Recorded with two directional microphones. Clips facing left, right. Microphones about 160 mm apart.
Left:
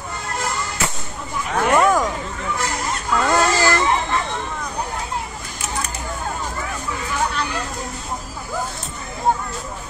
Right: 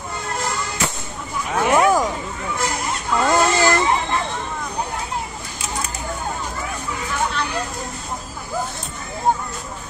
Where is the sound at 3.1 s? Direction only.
20° right (ahead or behind).